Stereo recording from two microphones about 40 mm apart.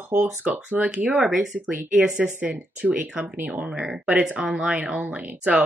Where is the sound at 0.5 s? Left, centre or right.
Right.